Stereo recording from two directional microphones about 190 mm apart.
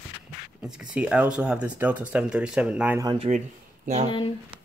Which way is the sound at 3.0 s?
20° right (ahead or behind).